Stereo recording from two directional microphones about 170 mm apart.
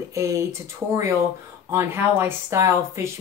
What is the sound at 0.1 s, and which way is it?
Speech, 15° right (ahead or behind).